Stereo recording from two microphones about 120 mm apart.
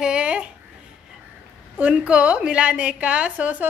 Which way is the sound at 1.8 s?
10° right (ahead or behind).